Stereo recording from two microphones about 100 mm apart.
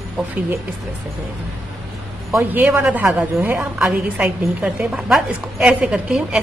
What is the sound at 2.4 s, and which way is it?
A woman's voice, 15° right (ahead or behind).